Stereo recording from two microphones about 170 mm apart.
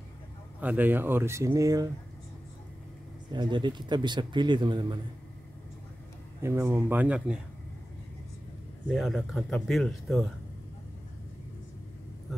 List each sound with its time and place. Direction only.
0.6 s speech: 10° right (ahead or behind)
3.3 s a man's voice: 25° right (ahead or behind)
6.6 s speech: 10° right (ahead or behind)
8.8 s speech: centre (ahead or behind)